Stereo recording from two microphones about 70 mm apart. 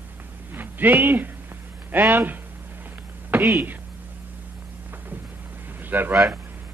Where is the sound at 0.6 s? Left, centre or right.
Right.